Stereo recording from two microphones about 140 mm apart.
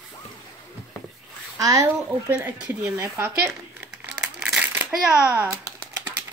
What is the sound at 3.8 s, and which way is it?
Crumpling, 5° right (ahead or behind).